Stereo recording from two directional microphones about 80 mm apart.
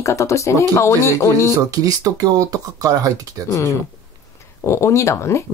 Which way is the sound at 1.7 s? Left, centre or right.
Right.